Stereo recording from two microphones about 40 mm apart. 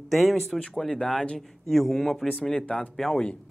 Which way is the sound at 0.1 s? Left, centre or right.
Centre.